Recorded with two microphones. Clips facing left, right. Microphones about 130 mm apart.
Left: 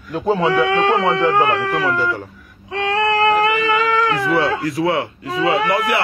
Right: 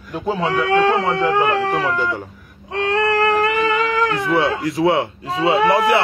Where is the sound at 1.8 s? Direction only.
20° right (ahead or behind).